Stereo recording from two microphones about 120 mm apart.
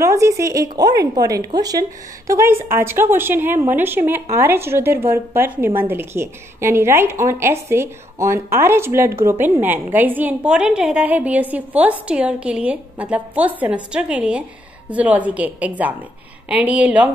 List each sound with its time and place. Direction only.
0.0 s a woman's voice: 25° right (ahead or behind)